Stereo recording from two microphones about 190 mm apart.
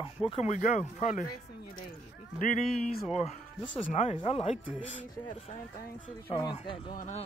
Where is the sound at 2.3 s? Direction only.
45° left (ahead or behind).